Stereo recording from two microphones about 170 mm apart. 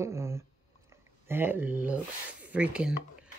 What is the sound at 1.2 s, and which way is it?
Speech, 10° right (ahead or behind).